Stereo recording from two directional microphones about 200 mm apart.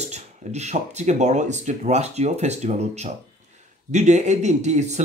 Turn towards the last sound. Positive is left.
turn(degrees=-35)  # may be behind; listen again after turning